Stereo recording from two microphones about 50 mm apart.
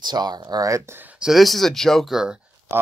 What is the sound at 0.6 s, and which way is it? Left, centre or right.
Speech, right.